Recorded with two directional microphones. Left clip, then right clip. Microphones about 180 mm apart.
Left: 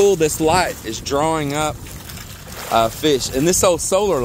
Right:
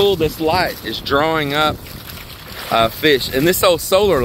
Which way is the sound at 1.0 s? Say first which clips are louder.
Right 3 dB; 5° left (ahead or behind).